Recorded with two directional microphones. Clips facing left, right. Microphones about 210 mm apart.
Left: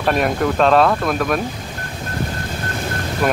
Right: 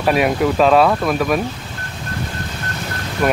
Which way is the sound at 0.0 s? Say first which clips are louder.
Right 2 dB; 5° right (ahead or behind).